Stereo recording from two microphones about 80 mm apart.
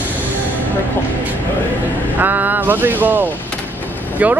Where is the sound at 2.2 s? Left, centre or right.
Right.